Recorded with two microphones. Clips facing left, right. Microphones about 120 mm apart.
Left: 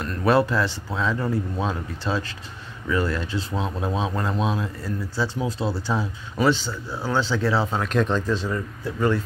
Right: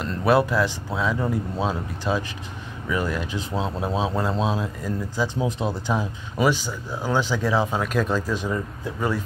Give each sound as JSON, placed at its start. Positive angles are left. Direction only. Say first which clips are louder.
{"t": 0.2, "sound": "speech", "louder": "even", "side_deg": -10}
{"t": 4.3, "sound": "speech", "louder": "right 1 dB", "side_deg": -30}
{"t": 4.6, "sound": "speech", "louder": "right 1 dB", "side_deg": -15}